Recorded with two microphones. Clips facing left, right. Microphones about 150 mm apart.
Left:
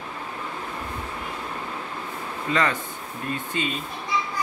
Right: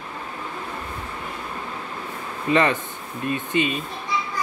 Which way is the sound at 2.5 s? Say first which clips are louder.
Right 5 dB; 20° right (ahead or behind).